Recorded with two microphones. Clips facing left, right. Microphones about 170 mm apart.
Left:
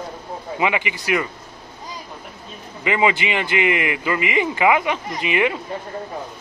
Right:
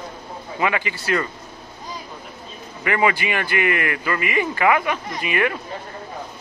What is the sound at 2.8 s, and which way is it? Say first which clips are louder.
Speech: left 1 dB; 20° left (ahead or behind).